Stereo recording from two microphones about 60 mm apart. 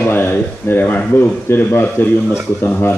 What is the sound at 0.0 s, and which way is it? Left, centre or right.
A man's voice, left.